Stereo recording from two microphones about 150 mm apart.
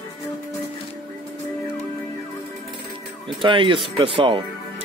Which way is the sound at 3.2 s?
35° right (ahead or behind).